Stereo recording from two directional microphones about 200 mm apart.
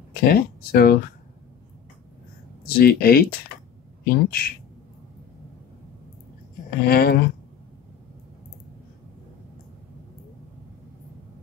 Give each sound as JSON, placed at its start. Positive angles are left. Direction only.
{"t": 0.1, "sound": "speech", "side_deg": 50}
{"t": 2.6, "sound": "speech", "side_deg": 50}
{"t": 6.9, "sound": "speech", "side_deg": 50}